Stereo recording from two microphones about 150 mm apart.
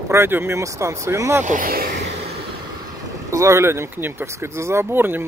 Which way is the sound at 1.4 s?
60° right (ahead or behind).